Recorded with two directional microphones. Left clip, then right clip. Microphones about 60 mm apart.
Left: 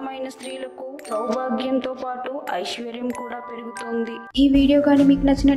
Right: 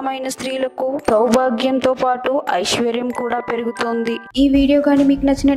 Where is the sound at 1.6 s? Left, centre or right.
Right.